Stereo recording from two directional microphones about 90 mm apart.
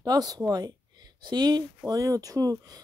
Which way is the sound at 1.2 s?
55° right (ahead or behind).